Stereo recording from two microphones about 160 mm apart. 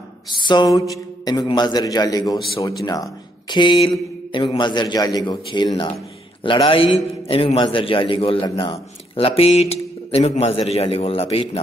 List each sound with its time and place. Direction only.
0.4 s a man's voice: 30° left (ahead or behind)